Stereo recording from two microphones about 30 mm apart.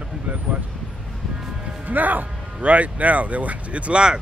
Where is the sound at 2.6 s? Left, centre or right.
Right.